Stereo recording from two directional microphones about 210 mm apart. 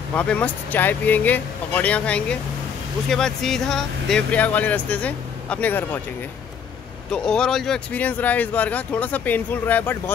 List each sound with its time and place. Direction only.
0.1 s speech: 5° left (ahead or behind)
7.1 s speech: 5° left (ahead or behind)